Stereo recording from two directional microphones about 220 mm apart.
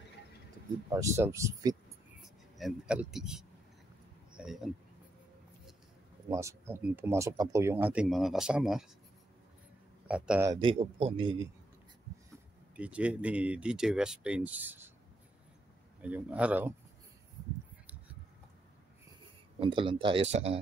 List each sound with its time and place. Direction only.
0.9 s speech: 15° right (ahead or behind)
2.2 s speech: centre (ahead or behind)
4.3 s a sound: 5° right (ahead or behind)
6.2 s speech: 15° right (ahead or behind)
10.0 s a man's voice: 5° right (ahead or behind)
10.5 s speech: 25° right (ahead or behind)
12.7 s speech: 5° right (ahead or behind)
16.0 s speech: 5° right (ahead or behind)
19.6 s speech: 25° right (ahead or behind)